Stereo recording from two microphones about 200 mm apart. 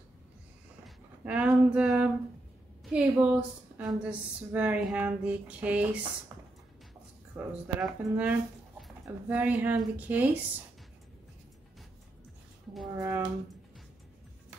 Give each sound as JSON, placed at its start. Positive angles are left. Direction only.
{"t": 0.8, "sound": "a woman's voice", "side_deg": -5}
{"t": 7.3, "sound": "a woman's voice", "side_deg": -10}
{"t": 12.9, "sound": "a woman's voice", "side_deg": -15}